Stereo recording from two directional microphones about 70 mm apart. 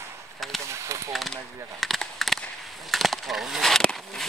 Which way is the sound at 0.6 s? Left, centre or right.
Right.